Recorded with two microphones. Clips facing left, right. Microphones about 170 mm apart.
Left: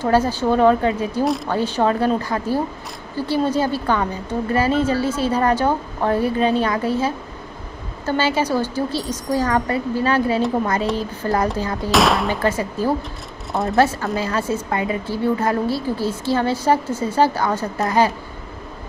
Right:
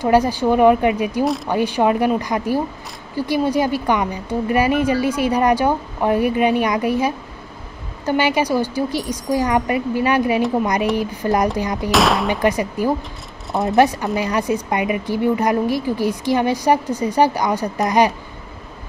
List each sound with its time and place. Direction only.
0.0 s a woman's voice: 15° right (ahead or behind)
1.2 s speech: centre (ahead or behind)
1.5 s a woman's voice: 15° right (ahead or behind)
11.9 s speech: centre (ahead or behind)
12.3 s a woman's voice: 15° right (ahead or behind)
13.5 s speech: centre (ahead or behind)
13.7 s a woman's voice: 15° right (ahead or behind)